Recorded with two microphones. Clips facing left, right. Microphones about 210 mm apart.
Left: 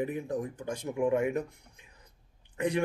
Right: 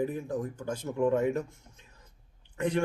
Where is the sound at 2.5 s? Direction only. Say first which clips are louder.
Even; 15° left (ahead or behind).